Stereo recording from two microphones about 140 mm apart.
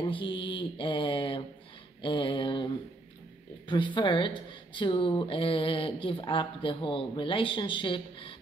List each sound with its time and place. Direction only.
0.1 s speech: 35° left (ahead or behind)
2.0 s a sound: 35° left (ahead or behind)
3.6 s speech: 35° left (ahead or behind)